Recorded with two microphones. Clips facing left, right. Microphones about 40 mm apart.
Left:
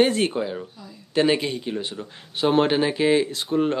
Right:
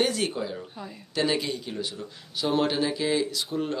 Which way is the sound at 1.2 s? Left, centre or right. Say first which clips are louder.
Left 6 dB; left.